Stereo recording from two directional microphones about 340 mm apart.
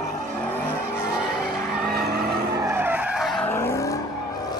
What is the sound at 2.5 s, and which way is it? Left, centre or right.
Vehicle, centre.